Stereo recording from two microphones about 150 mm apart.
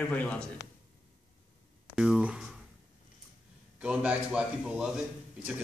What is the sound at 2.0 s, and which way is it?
Speech, 5° right (ahead or behind).